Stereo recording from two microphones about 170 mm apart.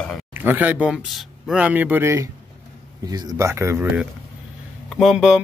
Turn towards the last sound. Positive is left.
turn(degrees=-5)  # may be behind; listen again after turning